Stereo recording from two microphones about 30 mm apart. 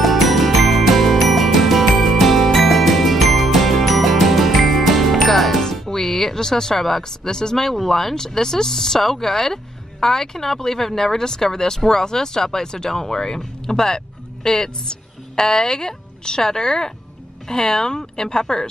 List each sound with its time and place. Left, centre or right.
0.0 s music: centre
5.9 s a sound: centre
7.0 s speech: centre